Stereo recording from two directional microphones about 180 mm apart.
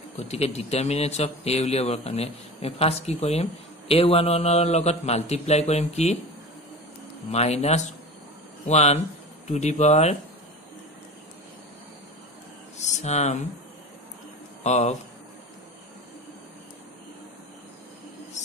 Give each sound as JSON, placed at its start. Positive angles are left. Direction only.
{"t": 0.2, "sound": "a man's voice", "side_deg": 35}
{"t": 7.2, "sound": "a man's voice", "side_deg": 40}
{"t": 12.7, "sound": "a sound", "side_deg": 40}
{"t": 14.6, "sound": "speech", "side_deg": 40}